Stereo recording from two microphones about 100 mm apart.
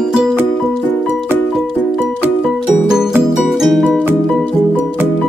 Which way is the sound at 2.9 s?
5° right (ahead or behind).